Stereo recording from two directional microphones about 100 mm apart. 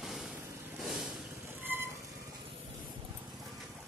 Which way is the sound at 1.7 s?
20° right (ahead or behind).